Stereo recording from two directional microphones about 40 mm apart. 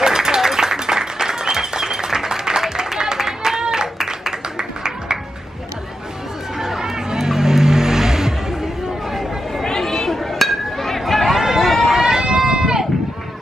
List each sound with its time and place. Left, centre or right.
0.0 s applause: centre
3.6 s music: centre
6.6 s vehicle: centre
9.1 s a sound: centre
9.7 s chatter: centre
11.9 s a sound: centre